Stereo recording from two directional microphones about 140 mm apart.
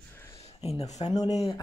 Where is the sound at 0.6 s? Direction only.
50° left (ahead or behind).